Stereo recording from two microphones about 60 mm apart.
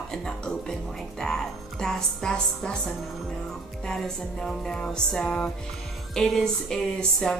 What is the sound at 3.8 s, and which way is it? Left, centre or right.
Speech, centre.